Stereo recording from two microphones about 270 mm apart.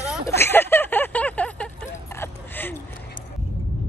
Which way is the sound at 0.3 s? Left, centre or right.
Centre.